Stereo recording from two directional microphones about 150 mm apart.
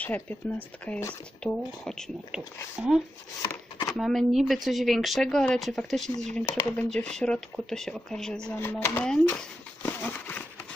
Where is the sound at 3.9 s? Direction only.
Centre (ahead or behind).